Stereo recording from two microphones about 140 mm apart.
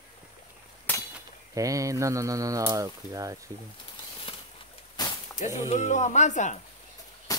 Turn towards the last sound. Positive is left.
turn(degrees=25)  # may be behind; listen again after turning